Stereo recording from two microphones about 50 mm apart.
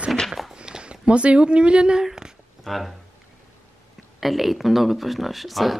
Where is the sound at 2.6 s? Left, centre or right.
Centre.